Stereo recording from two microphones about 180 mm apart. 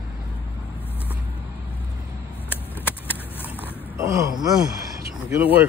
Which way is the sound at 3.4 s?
15° right (ahead or behind).